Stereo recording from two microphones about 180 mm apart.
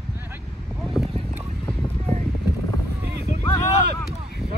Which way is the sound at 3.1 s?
70° right (ahead or behind).